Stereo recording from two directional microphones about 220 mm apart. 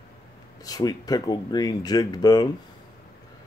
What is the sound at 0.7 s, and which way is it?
Speech, 15° left (ahead or behind).